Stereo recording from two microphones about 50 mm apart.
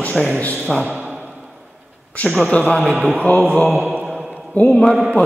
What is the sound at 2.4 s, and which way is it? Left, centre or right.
A man's voice, left.